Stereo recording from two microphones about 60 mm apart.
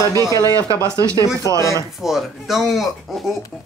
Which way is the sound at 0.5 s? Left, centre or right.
Right.